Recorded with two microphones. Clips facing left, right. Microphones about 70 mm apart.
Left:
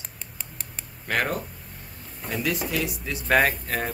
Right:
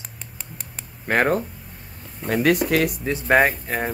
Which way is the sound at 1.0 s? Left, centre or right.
Right.